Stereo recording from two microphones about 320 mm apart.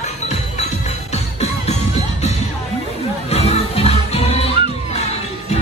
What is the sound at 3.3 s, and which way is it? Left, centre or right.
Music, centre.